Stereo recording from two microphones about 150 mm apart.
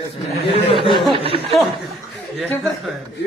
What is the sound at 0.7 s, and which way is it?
Snicker, 35° left (ahead or behind).